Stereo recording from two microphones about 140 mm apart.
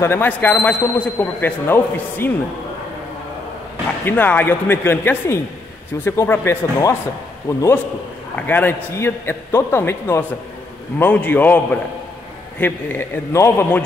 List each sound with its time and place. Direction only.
0.0 s a man's voice: 15° left (ahead or behind)
4.0 s a man's voice: 10° left (ahead or behind)